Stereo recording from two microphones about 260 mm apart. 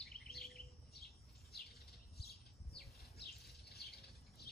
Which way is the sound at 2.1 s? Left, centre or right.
Left.